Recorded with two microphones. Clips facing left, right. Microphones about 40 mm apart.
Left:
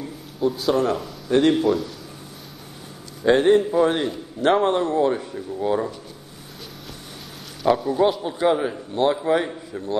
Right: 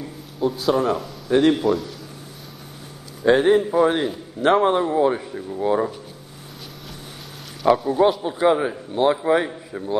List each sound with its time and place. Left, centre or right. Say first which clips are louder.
0.4 s a man's voice: even; centre
3.2 s a man's voice: even; centre
7.6 s a man's voice: right 2 dB; centre